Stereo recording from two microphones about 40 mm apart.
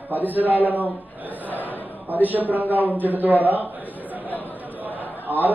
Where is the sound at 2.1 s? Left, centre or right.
Right.